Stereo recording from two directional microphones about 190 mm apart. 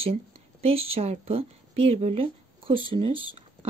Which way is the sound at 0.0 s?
30° right (ahead or behind).